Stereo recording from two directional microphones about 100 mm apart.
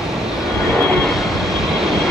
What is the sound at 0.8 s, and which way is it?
Vehicle, 15° left (ahead or behind).